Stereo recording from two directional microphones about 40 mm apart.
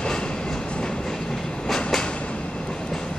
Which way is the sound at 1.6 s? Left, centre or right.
Centre.